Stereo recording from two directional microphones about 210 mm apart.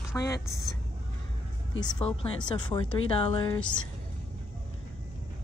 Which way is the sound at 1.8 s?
20° left (ahead or behind).